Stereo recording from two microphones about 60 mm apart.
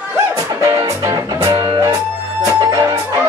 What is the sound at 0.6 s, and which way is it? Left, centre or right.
Music, right.